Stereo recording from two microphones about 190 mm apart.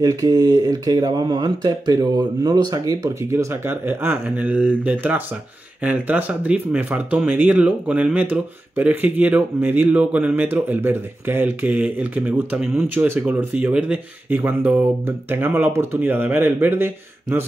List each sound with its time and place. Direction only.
0.0 s speech: 20° right (ahead or behind)